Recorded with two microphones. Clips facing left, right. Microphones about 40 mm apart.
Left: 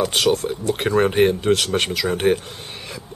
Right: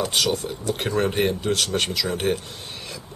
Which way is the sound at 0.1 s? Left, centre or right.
Left.